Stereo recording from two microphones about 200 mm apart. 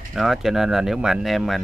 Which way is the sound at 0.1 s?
Centre (ahead or behind).